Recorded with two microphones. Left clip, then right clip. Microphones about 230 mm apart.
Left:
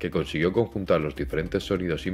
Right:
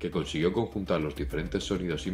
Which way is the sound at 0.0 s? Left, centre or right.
Left.